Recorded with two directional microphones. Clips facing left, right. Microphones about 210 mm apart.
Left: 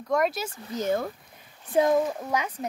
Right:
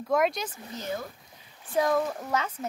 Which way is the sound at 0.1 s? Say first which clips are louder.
Even; centre (ahead or behind).